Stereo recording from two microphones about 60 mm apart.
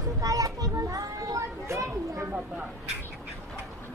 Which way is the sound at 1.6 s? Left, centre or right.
Right.